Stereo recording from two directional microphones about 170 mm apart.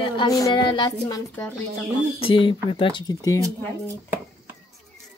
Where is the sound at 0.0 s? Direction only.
25° left (ahead or behind).